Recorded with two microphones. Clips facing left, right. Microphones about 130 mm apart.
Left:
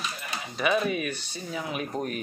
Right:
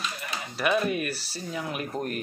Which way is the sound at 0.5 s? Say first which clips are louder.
Even; centre (ahead or behind).